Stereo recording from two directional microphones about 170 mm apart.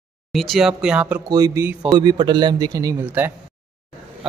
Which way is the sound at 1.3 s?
25° right (ahead or behind).